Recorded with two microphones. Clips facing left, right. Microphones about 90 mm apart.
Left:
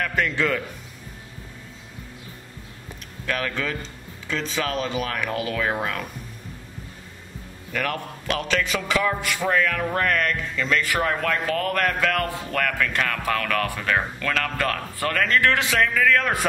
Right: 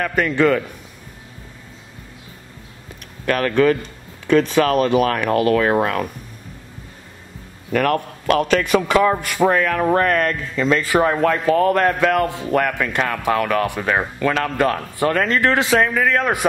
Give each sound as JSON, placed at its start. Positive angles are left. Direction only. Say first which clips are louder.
{"t": 0.0, "sound": "a man's voice", "louder": "right 7 dB", "side_deg": -50}
{"t": 3.3, "sound": "speech", "louder": "right 11 dB", "side_deg": -55}
{"t": 7.7, "sound": "a man's voice", "louder": "right 9 dB", "side_deg": -50}